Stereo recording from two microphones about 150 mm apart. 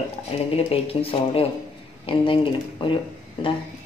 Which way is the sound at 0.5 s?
40° left (ahead or behind).